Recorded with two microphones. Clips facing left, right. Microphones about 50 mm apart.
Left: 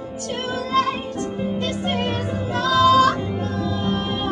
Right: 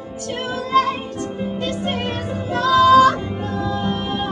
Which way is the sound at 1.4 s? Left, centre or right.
Centre.